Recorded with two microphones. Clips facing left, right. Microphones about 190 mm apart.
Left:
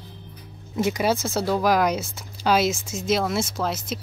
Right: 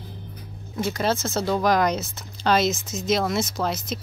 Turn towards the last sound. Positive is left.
turn(degrees=5)  # may be behind; listen again after turning